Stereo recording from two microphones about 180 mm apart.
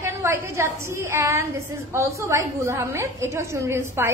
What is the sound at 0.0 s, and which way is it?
A woman's voice, 15° right (ahead or behind).